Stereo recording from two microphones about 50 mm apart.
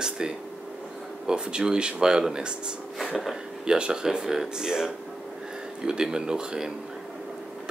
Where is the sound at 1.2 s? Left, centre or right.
Centre.